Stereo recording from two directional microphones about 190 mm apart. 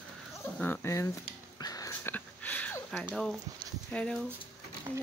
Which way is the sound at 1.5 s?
20° left (ahead or behind).